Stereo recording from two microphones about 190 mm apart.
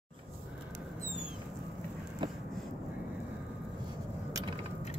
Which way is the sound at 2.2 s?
25° right (ahead or behind).